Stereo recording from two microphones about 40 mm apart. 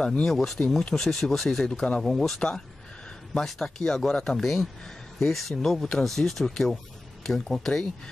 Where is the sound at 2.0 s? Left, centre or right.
Centre.